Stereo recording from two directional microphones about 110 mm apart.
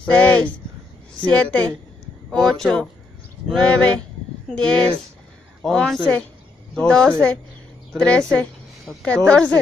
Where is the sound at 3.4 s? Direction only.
10° left (ahead or behind).